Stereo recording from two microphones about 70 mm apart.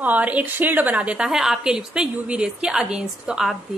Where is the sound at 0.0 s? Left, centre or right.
Right.